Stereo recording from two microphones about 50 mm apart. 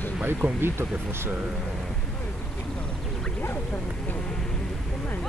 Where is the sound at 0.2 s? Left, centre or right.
Right.